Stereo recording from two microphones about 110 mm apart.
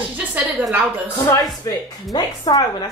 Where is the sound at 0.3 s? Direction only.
15° right (ahead or behind).